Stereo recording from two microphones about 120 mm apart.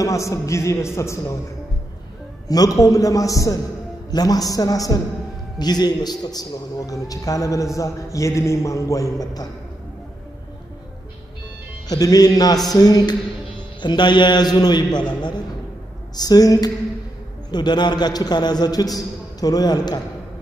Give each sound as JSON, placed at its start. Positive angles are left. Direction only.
{"t": 0.0, "sound": "a man's voice", "side_deg": 25}
{"t": 2.4, "sound": "a man's voice", "side_deg": 30}
{"t": 11.9, "sound": "a man's voice", "side_deg": 30}